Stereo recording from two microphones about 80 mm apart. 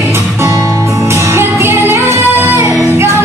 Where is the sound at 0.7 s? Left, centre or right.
Right.